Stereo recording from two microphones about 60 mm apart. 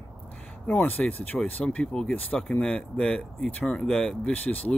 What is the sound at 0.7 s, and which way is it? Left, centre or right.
Speech, left.